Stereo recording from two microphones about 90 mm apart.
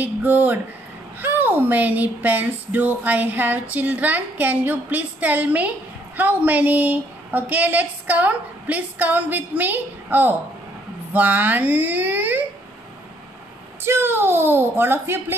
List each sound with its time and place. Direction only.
0.0 s a woman's voice: 20° right (ahead or behind)
13.8 s a woman's voice: 25° right (ahead or behind)